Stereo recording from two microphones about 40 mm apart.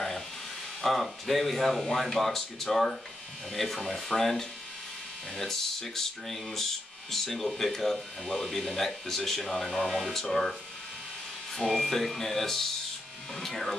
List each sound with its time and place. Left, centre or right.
0.8 s speech: centre
11.5 s speech: centre